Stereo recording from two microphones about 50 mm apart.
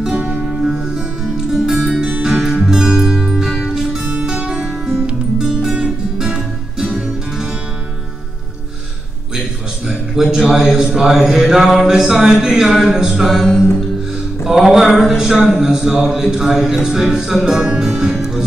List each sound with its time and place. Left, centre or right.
0.1 s music: right
0.5 s music: centre
2.0 s music: right
2.3 s music: centre
4.0 s music: right
10.1 s a man's voice: centre
10.9 s a sound: centre
13.4 s music: centre
14.4 s a sound: centre
16.1 s music: centre